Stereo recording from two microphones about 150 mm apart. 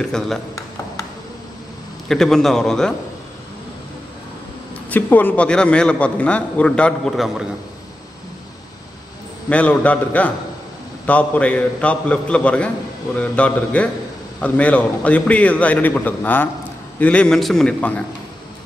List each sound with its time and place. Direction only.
0.0 s a man's voice: 5° left (ahead or behind)
2.0 s a man's voice: 5° left (ahead or behind)
4.8 s a man's voice: 10° left (ahead or behind)
9.5 s a man's voice: 10° left (ahead or behind)